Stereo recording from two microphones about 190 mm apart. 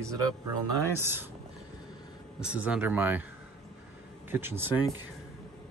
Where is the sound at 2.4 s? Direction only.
5° right (ahead or behind).